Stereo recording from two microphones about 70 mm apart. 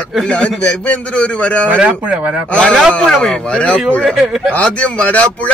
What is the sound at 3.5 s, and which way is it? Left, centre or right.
Speech, centre.